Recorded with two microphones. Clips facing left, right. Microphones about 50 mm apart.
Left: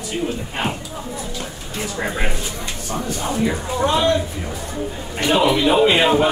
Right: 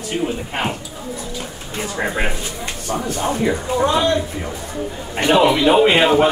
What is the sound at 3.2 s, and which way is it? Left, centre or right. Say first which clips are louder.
Speech: right 2 dB; right.